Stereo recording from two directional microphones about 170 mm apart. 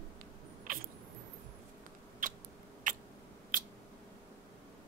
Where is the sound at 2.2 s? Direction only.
55° right (ahead or behind).